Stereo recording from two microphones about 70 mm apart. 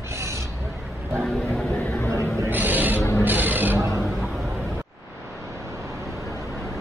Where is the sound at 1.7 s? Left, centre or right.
Left.